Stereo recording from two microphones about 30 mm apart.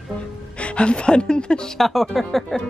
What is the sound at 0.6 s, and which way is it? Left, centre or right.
Speech, left.